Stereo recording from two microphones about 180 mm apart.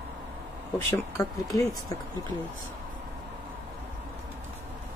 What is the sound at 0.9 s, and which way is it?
Speech, 15° left (ahead or behind).